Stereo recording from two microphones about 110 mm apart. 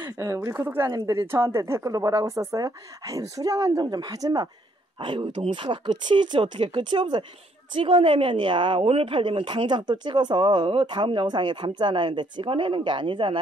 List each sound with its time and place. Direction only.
0.0 s a woman's voice: 30° right (ahead or behind)
4.9 s speech: 50° right (ahead or behind)